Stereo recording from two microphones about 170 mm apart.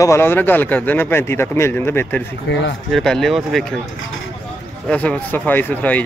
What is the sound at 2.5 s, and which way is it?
Speech, 90° left.